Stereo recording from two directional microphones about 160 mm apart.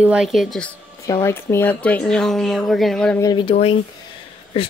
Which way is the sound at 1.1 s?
20° left (ahead or behind).